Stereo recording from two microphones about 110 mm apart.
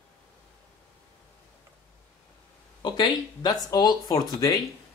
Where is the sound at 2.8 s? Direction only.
40° left (ahead or behind).